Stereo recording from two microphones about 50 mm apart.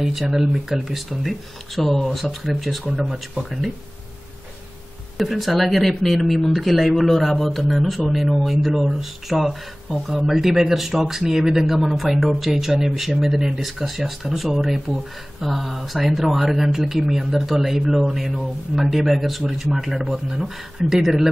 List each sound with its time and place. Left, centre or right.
0.2 s speech: centre
1.8 s speech: centre
5.1 s speech: centre